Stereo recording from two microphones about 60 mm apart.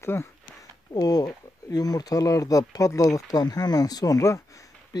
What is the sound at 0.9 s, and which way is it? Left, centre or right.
Speech, left.